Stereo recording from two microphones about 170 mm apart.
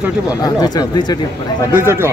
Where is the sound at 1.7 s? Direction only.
15° right (ahead or behind).